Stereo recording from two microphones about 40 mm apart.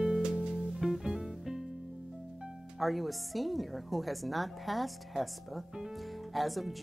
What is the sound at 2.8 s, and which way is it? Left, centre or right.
Speech, centre.